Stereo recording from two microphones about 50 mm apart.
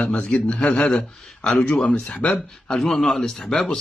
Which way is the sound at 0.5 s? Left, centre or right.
Centre.